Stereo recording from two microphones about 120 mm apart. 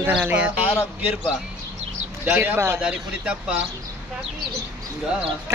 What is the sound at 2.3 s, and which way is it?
Speech, 15° right (ahead or behind).